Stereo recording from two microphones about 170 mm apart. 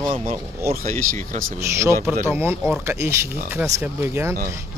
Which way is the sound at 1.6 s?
15° right (ahead or behind).